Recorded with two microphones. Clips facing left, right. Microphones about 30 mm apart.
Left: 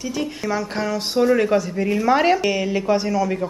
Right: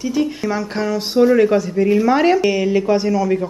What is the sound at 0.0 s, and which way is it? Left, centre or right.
Speech, centre.